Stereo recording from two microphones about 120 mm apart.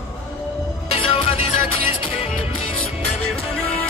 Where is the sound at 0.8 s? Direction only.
50° left (ahead or behind).